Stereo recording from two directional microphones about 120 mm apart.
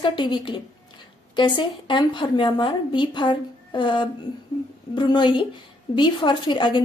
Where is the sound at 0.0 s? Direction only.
40° left (ahead or behind).